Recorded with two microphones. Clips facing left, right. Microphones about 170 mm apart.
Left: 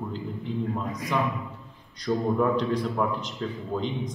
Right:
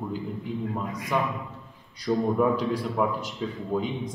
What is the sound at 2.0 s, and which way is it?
A man's voice, 10° right (ahead or behind).